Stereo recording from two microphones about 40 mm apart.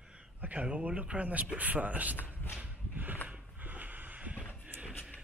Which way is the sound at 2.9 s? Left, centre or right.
Right.